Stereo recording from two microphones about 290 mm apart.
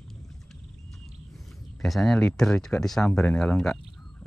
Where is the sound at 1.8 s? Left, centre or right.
Centre.